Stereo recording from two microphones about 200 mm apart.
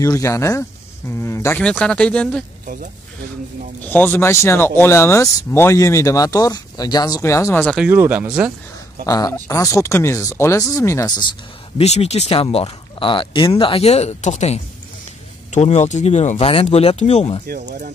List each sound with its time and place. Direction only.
0.0 s speech: 15° left (ahead or behind)
2.6 s speech: 45° right (ahead or behind)
3.8 s speech: 10° left (ahead or behind)
7.7 s speech: 10° right (ahead or behind)
9.0 s speech: 15° left (ahead or behind)
11.8 s speech: 35° left (ahead or behind)
17.5 s speech: 40° right (ahead or behind)